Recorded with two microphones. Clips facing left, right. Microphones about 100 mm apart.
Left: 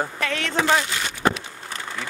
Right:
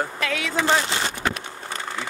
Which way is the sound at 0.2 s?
5° right (ahead or behind).